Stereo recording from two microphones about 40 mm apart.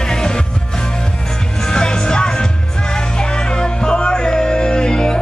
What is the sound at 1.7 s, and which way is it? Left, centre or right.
Music, left.